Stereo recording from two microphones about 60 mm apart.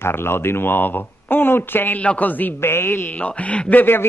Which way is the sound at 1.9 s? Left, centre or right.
Left.